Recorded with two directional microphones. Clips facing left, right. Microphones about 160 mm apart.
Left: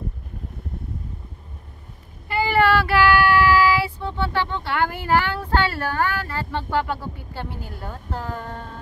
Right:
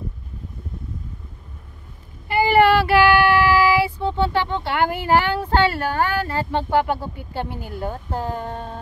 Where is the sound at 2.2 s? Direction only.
20° right (ahead or behind).